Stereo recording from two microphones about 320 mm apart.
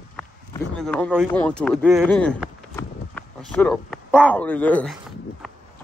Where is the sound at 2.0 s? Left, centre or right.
Centre.